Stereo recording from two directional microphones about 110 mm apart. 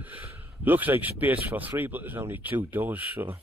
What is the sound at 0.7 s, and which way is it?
Speech, 15° right (ahead or behind).